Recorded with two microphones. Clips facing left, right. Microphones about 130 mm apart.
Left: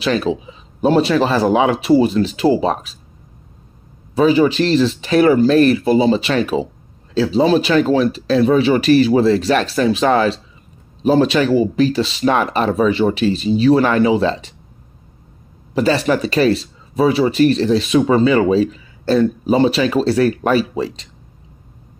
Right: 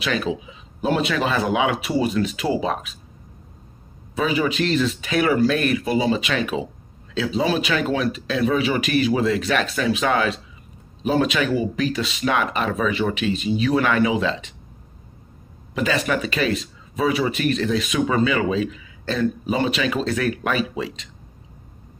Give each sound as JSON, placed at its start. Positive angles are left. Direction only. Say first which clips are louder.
{"t": 0.0, "sound": "speech", "louder": "left 6 dB", "side_deg": 30}
{"t": 4.1, "sound": "speech", "louder": "left 9 dB", "side_deg": 30}
{"t": 15.7, "sound": "speech", "louder": "left 6 dB", "side_deg": 35}